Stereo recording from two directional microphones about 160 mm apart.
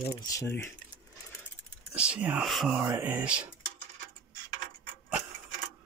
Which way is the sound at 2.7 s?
15° right (ahead or behind).